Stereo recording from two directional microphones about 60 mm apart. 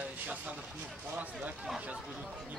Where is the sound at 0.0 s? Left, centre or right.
Right.